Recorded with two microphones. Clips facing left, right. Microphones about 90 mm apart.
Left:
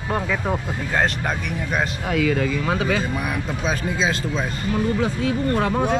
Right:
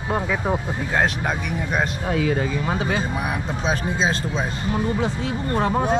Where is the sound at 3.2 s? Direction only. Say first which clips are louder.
Even; 35° right (ahead or behind).